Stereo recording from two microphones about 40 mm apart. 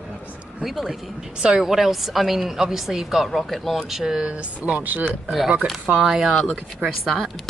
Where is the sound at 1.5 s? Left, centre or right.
Centre.